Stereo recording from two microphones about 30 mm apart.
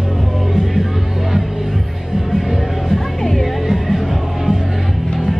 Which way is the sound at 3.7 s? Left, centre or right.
Centre.